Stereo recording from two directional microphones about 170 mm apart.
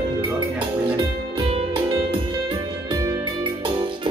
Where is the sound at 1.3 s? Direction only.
30° right (ahead or behind).